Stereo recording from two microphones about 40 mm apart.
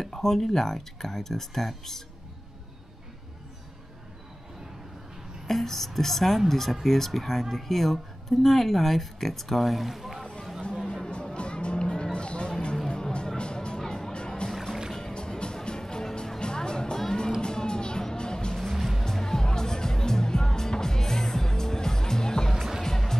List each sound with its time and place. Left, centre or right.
0.0 s speech: centre
5.5 s speech: centre
10.7 s a sound: centre
11.1 s music: left
14.5 s music: centre
15.1 s music: left
18.6 s music: centre
19.0 s music: centre